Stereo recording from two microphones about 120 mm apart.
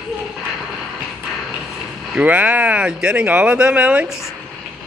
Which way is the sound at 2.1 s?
10° right (ahead or behind).